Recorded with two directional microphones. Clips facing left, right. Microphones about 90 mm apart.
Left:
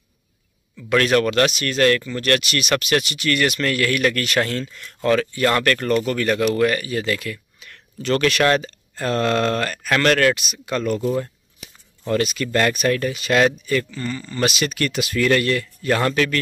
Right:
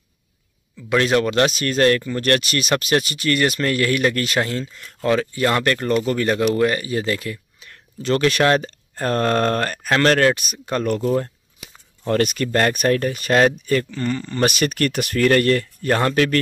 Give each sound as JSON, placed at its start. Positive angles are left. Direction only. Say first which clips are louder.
{"t": 0.7, "sound": "speech", "louder": "even", "side_deg": -20}
{"t": 13.8, "sound": "speech", "louder": "right 4 dB", "side_deg": -55}